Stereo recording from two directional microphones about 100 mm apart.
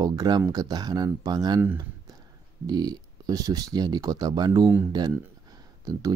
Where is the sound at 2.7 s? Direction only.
45° right (ahead or behind).